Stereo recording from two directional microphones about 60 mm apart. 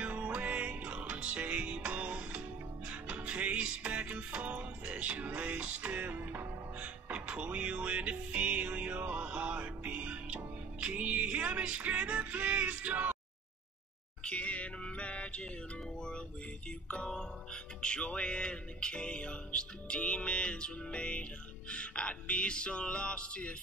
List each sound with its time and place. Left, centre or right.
0.0 s music: right
14.2 s music: left
16.8 s music: centre